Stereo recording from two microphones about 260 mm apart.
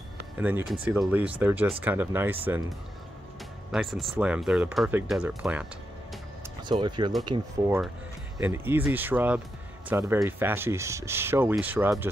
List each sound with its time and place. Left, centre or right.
0.4 s speech: centre
3.7 s speech: centre
6.6 s speech: centre